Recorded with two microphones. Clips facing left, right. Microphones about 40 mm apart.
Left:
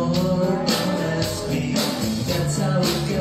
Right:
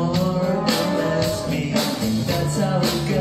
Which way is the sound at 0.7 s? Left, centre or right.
Right.